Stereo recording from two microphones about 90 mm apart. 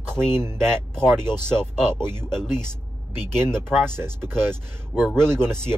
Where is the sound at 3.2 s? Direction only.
25° right (ahead or behind).